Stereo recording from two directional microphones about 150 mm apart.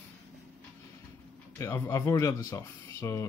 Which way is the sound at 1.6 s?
20° left (ahead or behind).